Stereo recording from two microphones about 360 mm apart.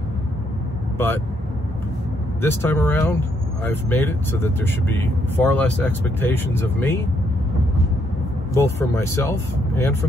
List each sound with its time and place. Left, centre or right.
2.4 s speech: centre
8.5 s speech: centre